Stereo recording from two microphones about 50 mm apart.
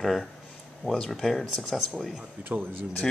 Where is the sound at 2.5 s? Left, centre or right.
Right.